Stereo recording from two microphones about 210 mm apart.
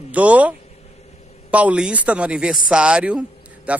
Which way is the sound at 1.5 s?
5° right (ahead or behind).